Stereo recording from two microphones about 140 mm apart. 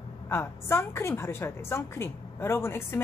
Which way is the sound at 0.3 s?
15° left (ahead or behind).